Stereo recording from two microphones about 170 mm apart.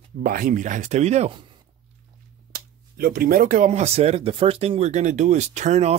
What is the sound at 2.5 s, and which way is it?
Speech, 60° right (ahead or behind).